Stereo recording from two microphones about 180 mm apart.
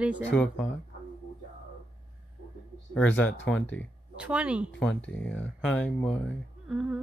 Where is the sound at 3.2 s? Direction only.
90° left.